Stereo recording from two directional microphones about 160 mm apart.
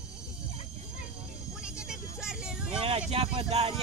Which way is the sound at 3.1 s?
40° right (ahead or behind).